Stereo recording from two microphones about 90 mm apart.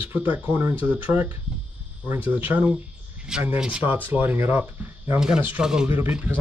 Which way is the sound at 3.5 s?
10° right (ahead or behind).